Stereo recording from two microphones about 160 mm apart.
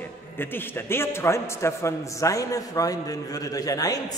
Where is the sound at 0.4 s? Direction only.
15° left (ahead or behind).